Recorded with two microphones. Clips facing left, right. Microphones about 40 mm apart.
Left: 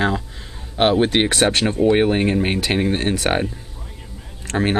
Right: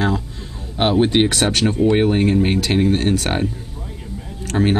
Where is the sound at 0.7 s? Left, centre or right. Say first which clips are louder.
Right 1 dB; centre.